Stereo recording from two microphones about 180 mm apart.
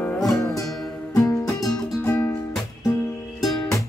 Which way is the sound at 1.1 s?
20° left (ahead or behind).